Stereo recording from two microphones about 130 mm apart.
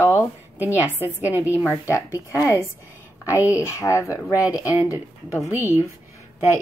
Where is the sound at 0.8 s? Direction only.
10° right (ahead or behind).